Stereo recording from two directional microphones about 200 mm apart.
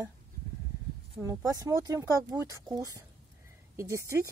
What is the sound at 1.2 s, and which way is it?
Speech, 15° right (ahead or behind).